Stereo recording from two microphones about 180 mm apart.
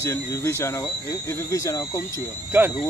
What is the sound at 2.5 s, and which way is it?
Speech, 10° right (ahead or behind).